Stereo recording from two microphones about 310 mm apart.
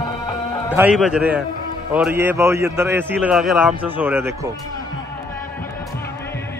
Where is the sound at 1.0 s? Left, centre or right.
Centre.